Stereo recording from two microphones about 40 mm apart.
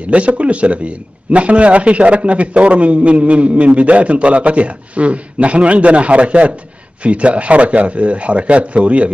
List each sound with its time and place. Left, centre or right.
0.1 s a man's voice: right